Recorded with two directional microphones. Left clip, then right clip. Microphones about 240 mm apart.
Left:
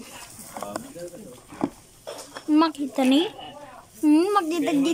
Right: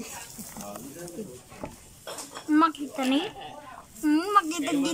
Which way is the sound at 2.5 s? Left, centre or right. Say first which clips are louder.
Left 2 dB; centre.